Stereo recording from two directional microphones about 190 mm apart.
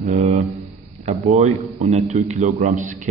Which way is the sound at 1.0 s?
35° right (ahead or behind).